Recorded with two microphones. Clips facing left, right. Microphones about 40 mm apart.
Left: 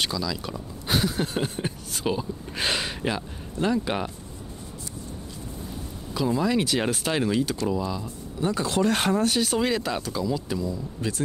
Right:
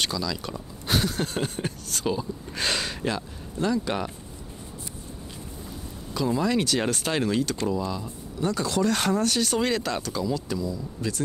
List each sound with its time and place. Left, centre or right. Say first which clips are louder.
0.0 s speech: even; centre
6.1 s speech: left 1 dB; centre; by 9.1 s left
9.1 s speech: left 1 dB; centre
10.7 s speech: left 1 dB; left